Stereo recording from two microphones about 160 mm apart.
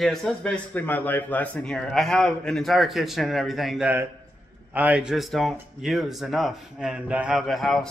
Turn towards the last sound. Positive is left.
turn(degrees=0)  # may be behind; listen again after turning